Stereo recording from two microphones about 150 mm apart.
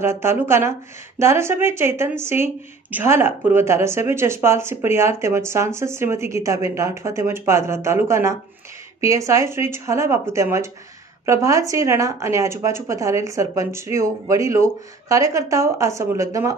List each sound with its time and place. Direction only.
0.0 s a woman's voice: 15° right (ahead or behind)